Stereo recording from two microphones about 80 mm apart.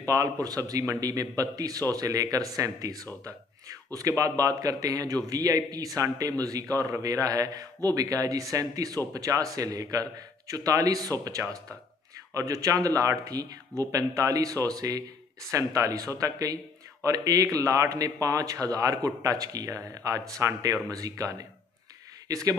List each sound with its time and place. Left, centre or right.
0.1 s a man's voice: right